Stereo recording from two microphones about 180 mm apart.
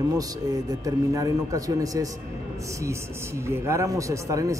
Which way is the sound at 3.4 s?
15° right (ahead or behind).